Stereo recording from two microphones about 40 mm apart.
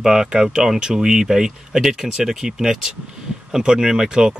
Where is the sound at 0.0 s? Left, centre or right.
Centre.